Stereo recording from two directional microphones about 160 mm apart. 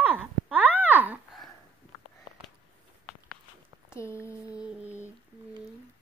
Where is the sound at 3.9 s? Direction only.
15° left (ahead or behind).